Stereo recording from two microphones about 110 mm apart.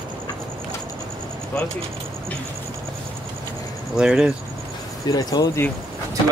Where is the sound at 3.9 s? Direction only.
5° right (ahead or behind).